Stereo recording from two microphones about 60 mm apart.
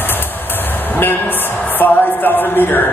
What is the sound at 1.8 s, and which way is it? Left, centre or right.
Music, left.